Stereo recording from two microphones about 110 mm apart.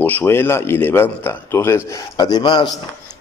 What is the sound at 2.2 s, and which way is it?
Speech, 40° left (ahead or behind).